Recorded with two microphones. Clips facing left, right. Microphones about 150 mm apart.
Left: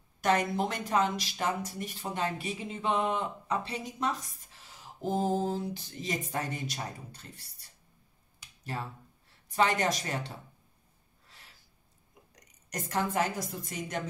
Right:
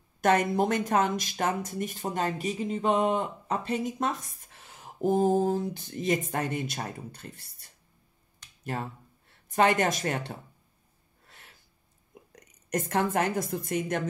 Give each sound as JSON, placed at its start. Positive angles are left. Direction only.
{"t": 0.2, "sound": "speech", "side_deg": -50}
{"t": 8.4, "sound": "finger snapping", "side_deg": 10}
{"t": 9.3, "sound": "a woman's voice", "side_deg": -55}
{"t": 11.2, "sound": "a sound", "side_deg": -55}
{"t": 12.1, "sound": "a woman's voice", "side_deg": -55}